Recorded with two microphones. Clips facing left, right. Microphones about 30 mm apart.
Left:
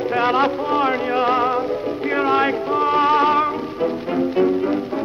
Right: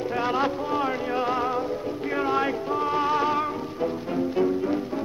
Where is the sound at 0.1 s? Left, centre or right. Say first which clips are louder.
Left 8 dB; left.